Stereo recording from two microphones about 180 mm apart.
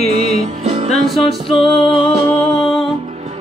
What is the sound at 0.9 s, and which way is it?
Music, centre (ahead or behind).